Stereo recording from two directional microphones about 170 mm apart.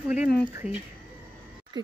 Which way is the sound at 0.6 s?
40° left (ahead or behind).